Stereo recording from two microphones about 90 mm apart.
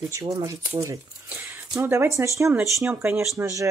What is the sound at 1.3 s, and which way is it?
Speech, 25° right (ahead or behind).